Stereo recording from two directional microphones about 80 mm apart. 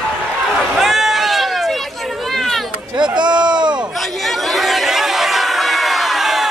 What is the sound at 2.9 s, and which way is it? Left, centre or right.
Run, right.